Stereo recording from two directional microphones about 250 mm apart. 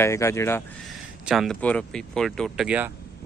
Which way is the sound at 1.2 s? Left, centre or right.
Centre.